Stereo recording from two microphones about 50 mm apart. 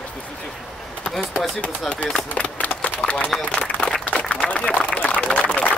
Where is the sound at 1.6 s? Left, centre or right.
Left.